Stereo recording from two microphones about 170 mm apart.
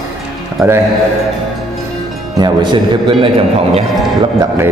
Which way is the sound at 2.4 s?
25° right (ahead or behind).